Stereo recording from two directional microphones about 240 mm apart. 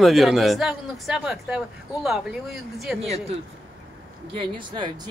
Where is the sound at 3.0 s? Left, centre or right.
Right.